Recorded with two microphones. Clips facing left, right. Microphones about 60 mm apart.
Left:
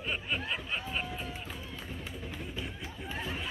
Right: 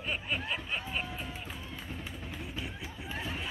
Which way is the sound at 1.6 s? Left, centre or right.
Centre.